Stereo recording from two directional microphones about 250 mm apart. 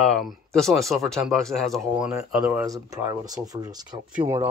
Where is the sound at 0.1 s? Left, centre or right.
Centre.